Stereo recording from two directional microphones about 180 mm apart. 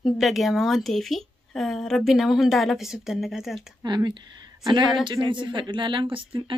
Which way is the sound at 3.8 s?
25° right (ahead or behind).